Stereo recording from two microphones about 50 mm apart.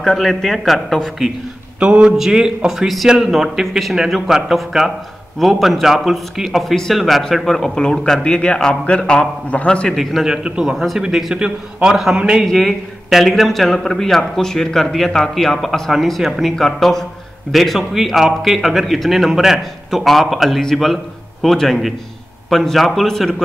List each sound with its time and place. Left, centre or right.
0.0 s a man's voice: centre
1.8 s a man's voice: right
2.1 s a man's voice: centre
7.4 s a man's voice: centre
9.9 s a man's voice: centre
12.4 s a man's voice: centre